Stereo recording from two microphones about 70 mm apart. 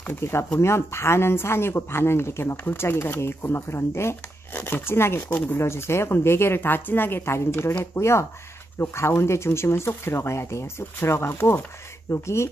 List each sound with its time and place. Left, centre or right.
0.1 s speech: left